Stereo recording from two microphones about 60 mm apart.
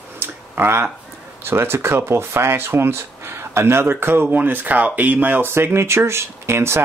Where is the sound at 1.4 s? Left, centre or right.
Right.